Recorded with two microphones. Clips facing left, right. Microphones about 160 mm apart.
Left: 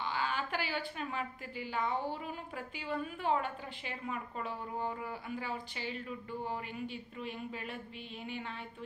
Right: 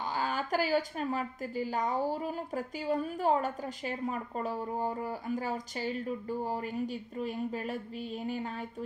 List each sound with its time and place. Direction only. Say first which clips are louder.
0.1 s a woman's voice: right 6 dB; 40° right (ahead or behind)